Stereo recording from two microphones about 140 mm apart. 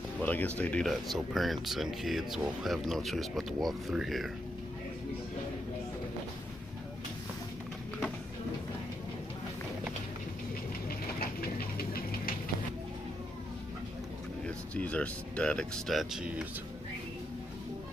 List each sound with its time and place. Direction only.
0.2 s speech: 10° left (ahead or behind)
11.1 s a sound: 90° left
14.8 s speech: 10° left (ahead or behind)